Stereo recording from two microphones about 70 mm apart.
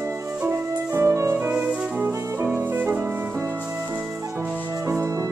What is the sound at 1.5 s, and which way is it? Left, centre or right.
Music, centre.